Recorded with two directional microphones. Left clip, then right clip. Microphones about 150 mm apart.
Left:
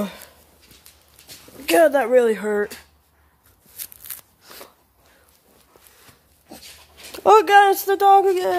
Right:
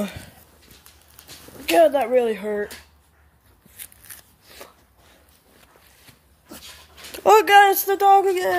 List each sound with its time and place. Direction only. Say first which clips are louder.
1.7 s speech: left 1 dB; 40° left (ahead or behind)
3.7 s a sound: left 3 dB; 65° left (ahead or behind)
7.2 s speech: even; 15° left (ahead or behind)
7.6 s speech: left 1 dB; 25° left (ahead or behind)